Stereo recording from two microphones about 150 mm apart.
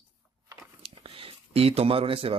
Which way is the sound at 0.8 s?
35° right (ahead or behind).